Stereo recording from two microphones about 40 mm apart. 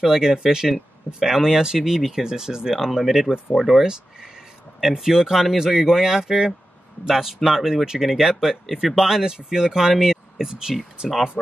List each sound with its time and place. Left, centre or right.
0.0 s speech: centre
2.2 s speech: centre
3.8 s a sound: centre
4.7 s speech: centre